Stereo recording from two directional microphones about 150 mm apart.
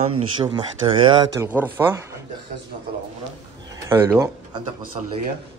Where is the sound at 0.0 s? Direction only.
35° right (ahead or behind).